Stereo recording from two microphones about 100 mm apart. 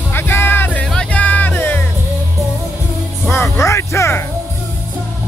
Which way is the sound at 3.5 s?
30° left (ahead or behind).